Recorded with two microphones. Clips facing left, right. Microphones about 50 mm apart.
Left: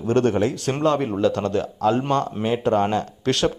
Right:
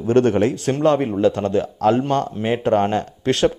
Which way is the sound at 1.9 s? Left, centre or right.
Right.